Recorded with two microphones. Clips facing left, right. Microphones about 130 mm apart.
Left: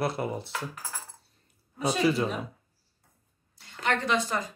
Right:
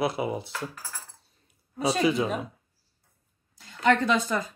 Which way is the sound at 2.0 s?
Centre (ahead or behind).